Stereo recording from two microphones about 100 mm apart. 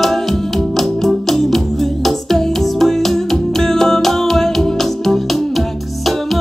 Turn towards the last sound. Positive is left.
turn(degrees=0)  # may be behind; listen again after turning